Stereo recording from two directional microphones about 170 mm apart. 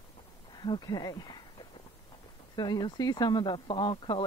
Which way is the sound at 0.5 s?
25° left (ahead or behind).